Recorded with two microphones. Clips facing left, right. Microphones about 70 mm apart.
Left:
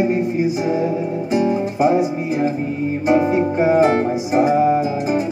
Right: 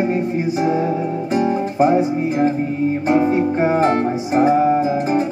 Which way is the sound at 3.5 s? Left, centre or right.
Right.